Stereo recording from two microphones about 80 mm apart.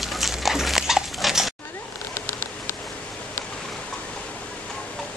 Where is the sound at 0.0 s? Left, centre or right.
Centre.